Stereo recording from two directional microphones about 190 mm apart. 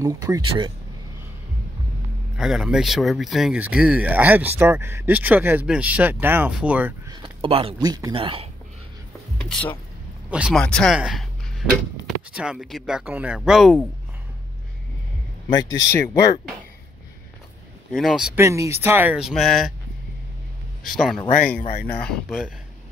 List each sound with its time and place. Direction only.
0.0 s speech: 15° right (ahead or behind)
2.3 s speech: centre (ahead or behind)
7.1 s speech: 25° right (ahead or behind)
9.4 s speech: 5° left (ahead or behind)
10.3 s speech: 5° right (ahead or behind)
12.4 s speech: 5° right (ahead or behind)
15.5 s speech: 15° left (ahead or behind)
17.9 s speech: centre (ahead or behind)
18.4 s speech: 15° right (ahead or behind)
20.9 s speech: centre (ahead or behind)
21.5 s speech: 45° left (ahead or behind)